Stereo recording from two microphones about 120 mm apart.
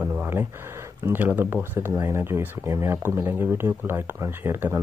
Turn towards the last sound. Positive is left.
turn(degrees=-20)  # may be behind; listen again after turning